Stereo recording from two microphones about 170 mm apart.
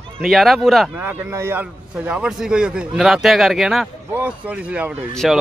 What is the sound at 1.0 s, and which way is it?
Speech, 10° right (ahead or behind).